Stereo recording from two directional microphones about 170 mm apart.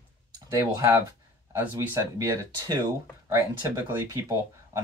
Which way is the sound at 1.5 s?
15° right (ahead or behind).